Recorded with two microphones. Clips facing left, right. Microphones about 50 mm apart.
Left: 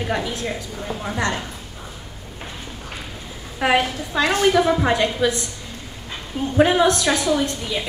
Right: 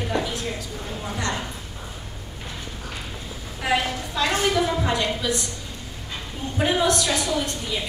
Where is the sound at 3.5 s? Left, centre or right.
Left.